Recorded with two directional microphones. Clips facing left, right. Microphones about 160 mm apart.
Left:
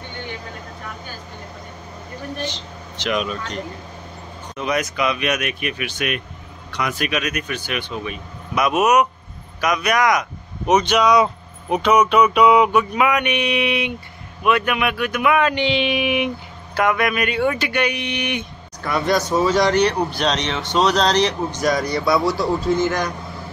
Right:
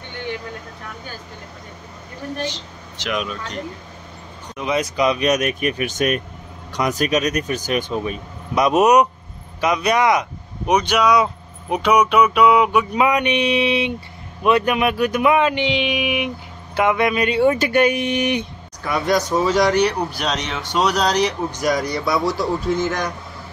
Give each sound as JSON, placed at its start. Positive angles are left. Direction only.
{"t": 2.4, "sound": "speech", "side_deg": -5}
{"t": 4.6, "sound": "speech", "side_deg": -20}
{"t": 4.8, "sound": "speech", "side_deg": -35}
{"t": 10.7, "sound": "speech", "side_deg": -10}
{"t": 12.9, "sound": "speech", "side_deg": -30}
{"t": 16.7, "sound": "speech", "side_deg": -20}
{"t": 19.0, "sound": "speech", "side_deg": -15}